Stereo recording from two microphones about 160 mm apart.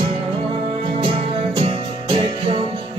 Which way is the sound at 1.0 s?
35° right (ahead or behind).